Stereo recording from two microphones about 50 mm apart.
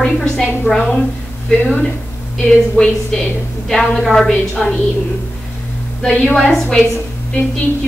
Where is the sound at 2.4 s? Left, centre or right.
Centre.